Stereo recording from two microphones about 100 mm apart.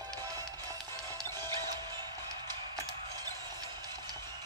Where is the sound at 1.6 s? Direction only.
45° right (ahead or behind).